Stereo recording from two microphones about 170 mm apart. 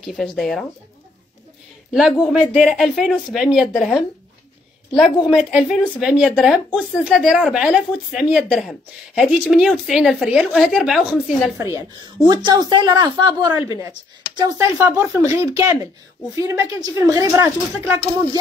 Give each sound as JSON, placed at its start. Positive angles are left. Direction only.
{"t": 0.0, "sound": "a woman's voice", "side_deg": 0}
{"t": 2.0, "sound": "a woman's voice", "side_deg": 0}
{"t": 5.5, "sound": "a woman's voice", "side_deg": -5}
{"t": 12.3, "sound": "speech", "side_deg": -25}